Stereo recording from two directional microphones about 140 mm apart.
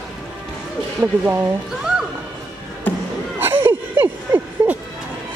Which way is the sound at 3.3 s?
15° right (ahead or behind).